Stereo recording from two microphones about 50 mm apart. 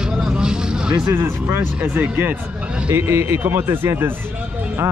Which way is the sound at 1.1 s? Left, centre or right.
Right.